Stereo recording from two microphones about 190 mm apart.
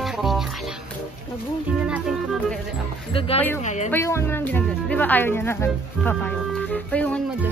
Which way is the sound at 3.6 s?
40° left (ahead or behind).